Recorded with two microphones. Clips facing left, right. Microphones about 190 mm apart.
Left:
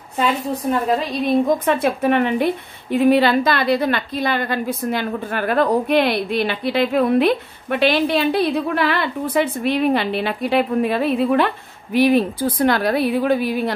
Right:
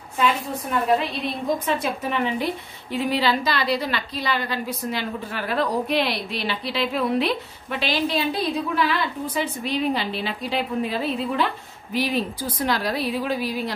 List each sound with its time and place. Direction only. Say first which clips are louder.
1.7 s a woman's voice: left 8 dB; 55° left (ahead or behind)